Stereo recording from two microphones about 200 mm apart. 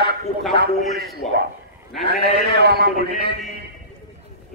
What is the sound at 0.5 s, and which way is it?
Speech, 55° right (ahead or behind).